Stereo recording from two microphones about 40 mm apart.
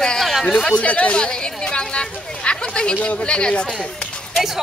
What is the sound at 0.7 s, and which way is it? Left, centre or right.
Speech, left.